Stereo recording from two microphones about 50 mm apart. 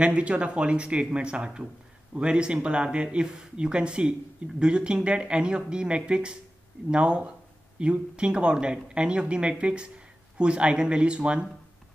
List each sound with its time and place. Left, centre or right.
0.0 s speech: right